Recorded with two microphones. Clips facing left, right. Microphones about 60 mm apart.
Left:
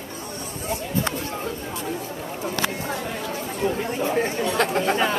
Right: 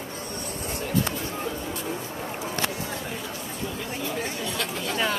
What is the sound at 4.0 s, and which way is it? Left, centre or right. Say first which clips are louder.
Chatter: left 8 dB; left.